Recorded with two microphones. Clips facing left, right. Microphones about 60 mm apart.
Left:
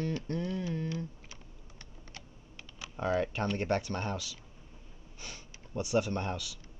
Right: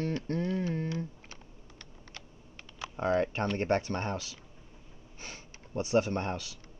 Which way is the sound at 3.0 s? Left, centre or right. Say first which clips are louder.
Right 2 dB; right.